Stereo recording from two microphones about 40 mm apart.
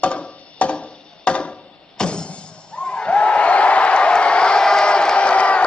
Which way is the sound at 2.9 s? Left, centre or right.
Left.